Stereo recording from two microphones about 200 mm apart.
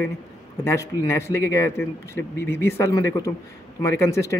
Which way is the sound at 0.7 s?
15° left (ahead or behind).